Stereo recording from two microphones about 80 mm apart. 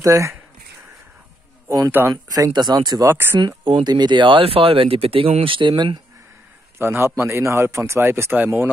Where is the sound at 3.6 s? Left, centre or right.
Right.